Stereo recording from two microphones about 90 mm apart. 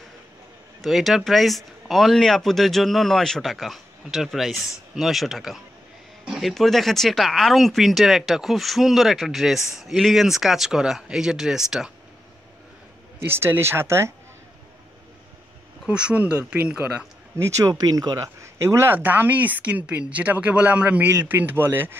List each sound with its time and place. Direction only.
0.7 s speech: centre (ahead or behind)
13.2 s speech: 25° right (ahead or behind)
15.9 s speech: 10° right (ahead or behind)
17.4 s speech: 40° right (ahead or behind)
18.9 s speech: 20° right (ahead or behind)